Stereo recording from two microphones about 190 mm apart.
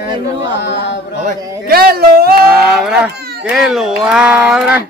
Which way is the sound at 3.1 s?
55° right (ahead or behind).